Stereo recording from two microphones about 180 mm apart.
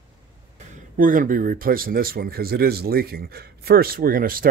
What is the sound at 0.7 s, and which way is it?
Speech, 50° right (ahead or behind).